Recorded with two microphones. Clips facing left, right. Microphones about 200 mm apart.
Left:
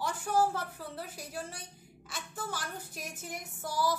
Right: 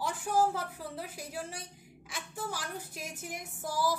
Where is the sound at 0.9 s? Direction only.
10° right (ahead or behind).